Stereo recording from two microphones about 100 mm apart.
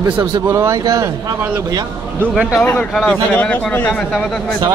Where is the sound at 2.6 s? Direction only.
20° left (ahead or behind).